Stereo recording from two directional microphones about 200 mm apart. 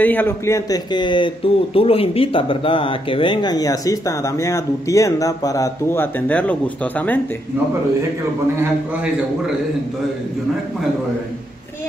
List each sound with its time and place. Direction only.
0.0 s a man's voice: 10° left (ahead or behind)